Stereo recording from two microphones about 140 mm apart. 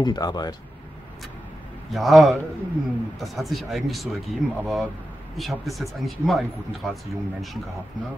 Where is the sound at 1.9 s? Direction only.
Centre (ahead or behind).